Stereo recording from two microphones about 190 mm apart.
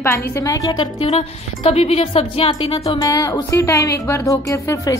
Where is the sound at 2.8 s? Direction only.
20° left (ahead or behind).